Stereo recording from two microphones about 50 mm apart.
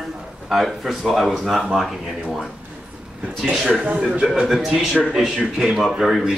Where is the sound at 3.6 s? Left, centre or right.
Right.